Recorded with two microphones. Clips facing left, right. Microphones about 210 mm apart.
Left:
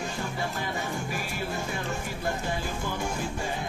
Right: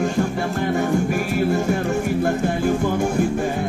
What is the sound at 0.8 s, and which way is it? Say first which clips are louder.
Music: right 13 dB; 55° right (ahead or behind).